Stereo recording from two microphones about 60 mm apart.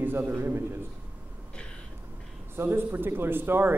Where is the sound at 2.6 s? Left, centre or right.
Right.